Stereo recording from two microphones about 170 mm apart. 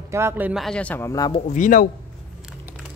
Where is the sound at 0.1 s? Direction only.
15° right (ahead or behind); by 1.4 s 20° left (ahead or behind).